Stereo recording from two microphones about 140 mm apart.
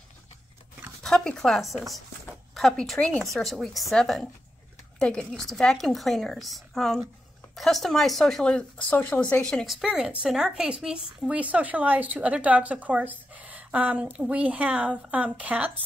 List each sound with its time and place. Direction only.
1.0 s a woman's voice: 5° left (ahead or behind)